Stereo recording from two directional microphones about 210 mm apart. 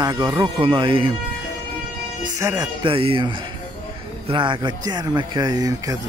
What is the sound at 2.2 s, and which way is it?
Speech, 15° right (ahead or behind).